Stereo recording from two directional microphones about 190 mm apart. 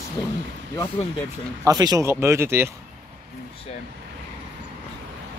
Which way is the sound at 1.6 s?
20° right (ahead or behind).